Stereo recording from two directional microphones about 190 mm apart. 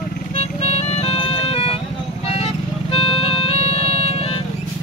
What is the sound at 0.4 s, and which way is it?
Music, 35° left (ahead or behind).